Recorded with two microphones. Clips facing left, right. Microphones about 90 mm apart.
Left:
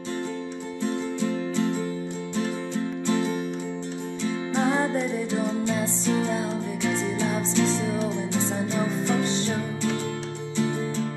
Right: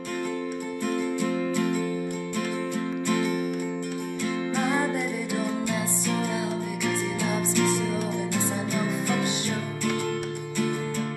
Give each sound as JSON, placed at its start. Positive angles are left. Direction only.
{"t": 0.8, "sound": "music", "side_deg": -55}
{"t": 3.1, "sound": "music", "side_deg": -55}
{"t": 4.6, "sound": "music", "side_deg": 25}
{"t": 7.5, "sound": "music", "side_deg": -55}
{"t": 8.4, "sound": "music", "side_deg": 25}